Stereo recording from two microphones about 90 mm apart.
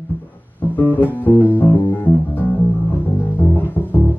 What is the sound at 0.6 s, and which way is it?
Music, 20° left (ahead or behind).